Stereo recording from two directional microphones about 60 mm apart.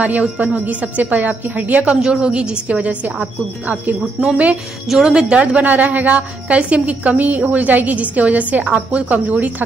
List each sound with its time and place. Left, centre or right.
0.0 s a woman's voice: right
2.0 s a woman's voice: centre
4.8 s a woman's voice: centre
5.4 s a woman's voice: right